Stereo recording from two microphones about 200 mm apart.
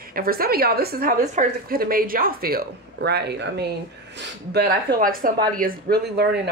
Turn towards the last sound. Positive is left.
turn(degrees=-55)  # may be behind; listen again after turning